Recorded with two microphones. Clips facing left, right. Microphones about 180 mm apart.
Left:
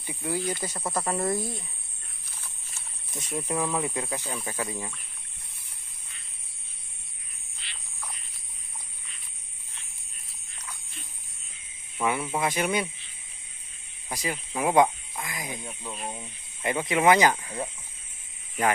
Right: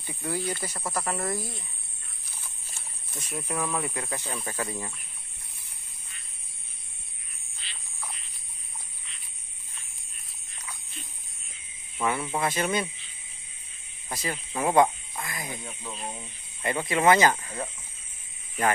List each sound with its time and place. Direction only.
0.0 s speech: 15° left (ahead or behind)
3.3 s speech: 15° left (ahead or behind)
12.0 s speech: 10° left (ahead or behind)
14.1 s speech: 10° left (ahead or behind)